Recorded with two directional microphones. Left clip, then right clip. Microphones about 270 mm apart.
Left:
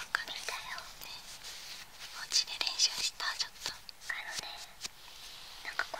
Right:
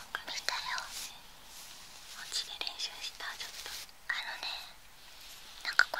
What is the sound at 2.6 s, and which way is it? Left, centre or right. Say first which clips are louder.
Whispering: left 7 dB; centre.